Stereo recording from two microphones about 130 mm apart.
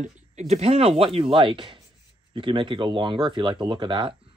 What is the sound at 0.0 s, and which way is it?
Speech, 60° right (ahead or behind).